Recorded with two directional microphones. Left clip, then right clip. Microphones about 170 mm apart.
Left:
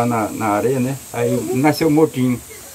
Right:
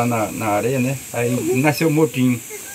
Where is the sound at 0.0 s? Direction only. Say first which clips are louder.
Left 2 dB; centre (ahead or behind).